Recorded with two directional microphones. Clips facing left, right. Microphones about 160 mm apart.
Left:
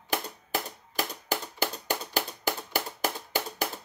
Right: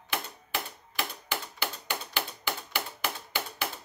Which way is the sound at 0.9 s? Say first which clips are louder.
Left 3 dB; 40° left (ahead or behind).